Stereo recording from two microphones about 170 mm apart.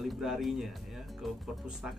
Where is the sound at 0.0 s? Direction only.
Centre (ahead or behind).